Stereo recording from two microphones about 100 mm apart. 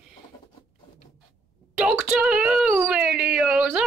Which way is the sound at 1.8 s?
10° right (ahead or behind).